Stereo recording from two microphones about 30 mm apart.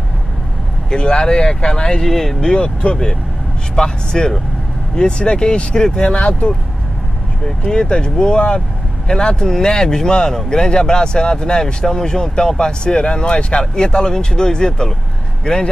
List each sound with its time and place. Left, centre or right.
0.8 s speech: left
2.0 s speech: centre
2.6 s speech: left
3.7 s speech: left
6.1 s speech: left
7.6 s speech: left